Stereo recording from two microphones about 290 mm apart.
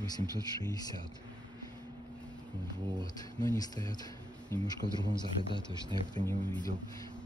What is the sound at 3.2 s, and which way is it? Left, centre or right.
Speech, centre.